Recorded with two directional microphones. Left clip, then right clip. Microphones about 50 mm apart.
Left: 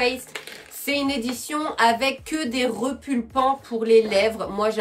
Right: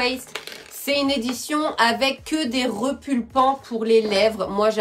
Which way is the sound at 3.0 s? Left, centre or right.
Right.